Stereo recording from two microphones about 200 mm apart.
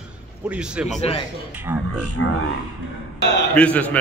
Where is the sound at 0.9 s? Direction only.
30° left (ahead or behind).